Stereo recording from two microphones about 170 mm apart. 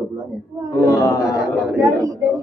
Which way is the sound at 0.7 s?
20° left (ahead or behind).